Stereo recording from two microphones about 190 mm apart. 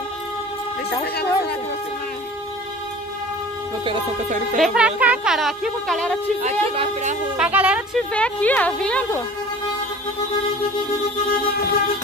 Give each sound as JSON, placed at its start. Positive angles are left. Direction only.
{"t": 1.0, "sound": "speech", "side_deg": 60}
{"t": 3.8, "sound": "speech", "side_deg": -25}
{"t": 4.6, "sound": "speech", "side_deg": 0}
{"t": 6.4, "sound": "speech", "side_deg": -35}
{"t": 7.3, "sound": "speech", "side_deg": -5}
{"t": 8.1, "sound": "a woman's voice", "side_deg": 5}